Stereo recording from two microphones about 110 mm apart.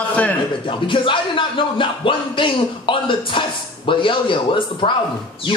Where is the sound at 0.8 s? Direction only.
50° left (ahead or behind).